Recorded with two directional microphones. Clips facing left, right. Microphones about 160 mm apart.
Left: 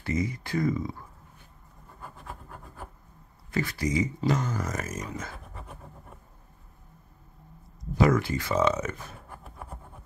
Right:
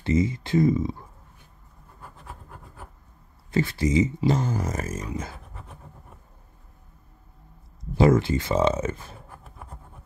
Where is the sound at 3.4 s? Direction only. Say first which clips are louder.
Right 5 dB; 25° right (ahead or behind).